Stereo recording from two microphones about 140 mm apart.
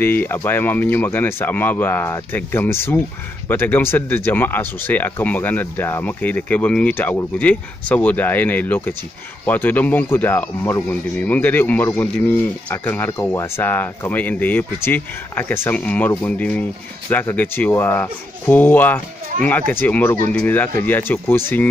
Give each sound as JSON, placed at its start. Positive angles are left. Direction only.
{"t": 0.0, "sound": "speech", "side_deg": 15}